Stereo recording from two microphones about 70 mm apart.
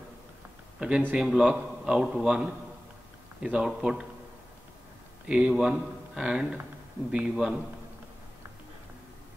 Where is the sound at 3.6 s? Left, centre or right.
Centre.